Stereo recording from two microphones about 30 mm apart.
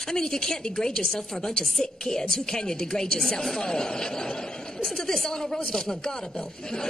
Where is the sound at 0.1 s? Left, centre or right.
Centre.